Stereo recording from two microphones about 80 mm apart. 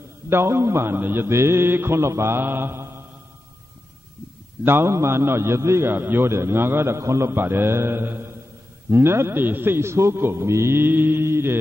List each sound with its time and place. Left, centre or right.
0.3 s a man's voice: right
4.6 s a man's voice: right